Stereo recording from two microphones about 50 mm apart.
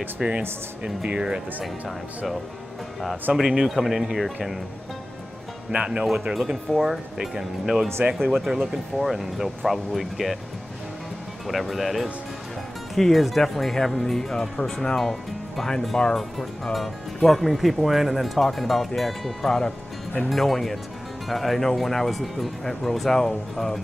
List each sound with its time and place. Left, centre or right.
0.2 s speech: centre
1.6 s speech: centre
3.3 s speech: centre
5.7 s speech: right
6.0 s speech: centre
11.4 s speech: centre